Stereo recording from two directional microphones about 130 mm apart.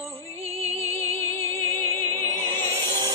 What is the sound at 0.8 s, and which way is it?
Music, 25° left (ahead or behind).